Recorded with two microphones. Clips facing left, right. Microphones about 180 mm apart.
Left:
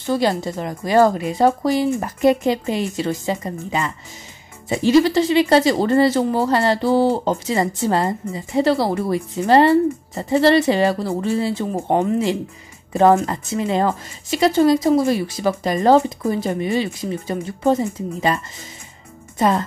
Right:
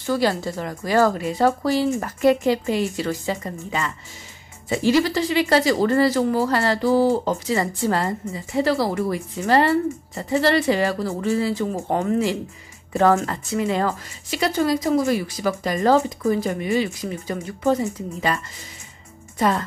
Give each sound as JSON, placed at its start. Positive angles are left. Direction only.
{"t": 0.0, "sound": "speech", "side_deg": 20}